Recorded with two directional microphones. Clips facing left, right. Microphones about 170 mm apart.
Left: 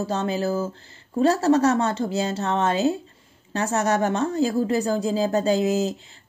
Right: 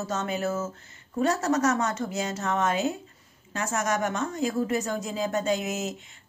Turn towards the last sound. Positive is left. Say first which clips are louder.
# left 7 dB
turn(degrees=35)  # may be behind; listen again after turning